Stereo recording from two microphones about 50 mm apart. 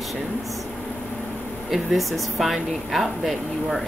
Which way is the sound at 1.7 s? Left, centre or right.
Centre.